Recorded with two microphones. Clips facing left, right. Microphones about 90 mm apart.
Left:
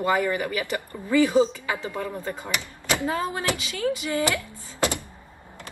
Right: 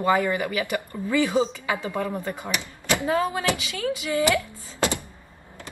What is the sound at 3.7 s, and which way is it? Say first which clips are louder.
Speech: left 1 dB; 30° left (ahead or behind).